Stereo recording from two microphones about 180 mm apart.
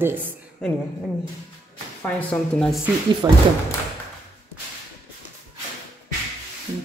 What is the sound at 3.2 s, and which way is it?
Speech, 20° right (ahead or behind).